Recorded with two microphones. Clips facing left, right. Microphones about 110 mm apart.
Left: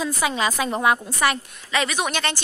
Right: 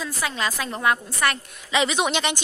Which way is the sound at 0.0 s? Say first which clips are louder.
Left 4 dB; 15° left (ahead or behind).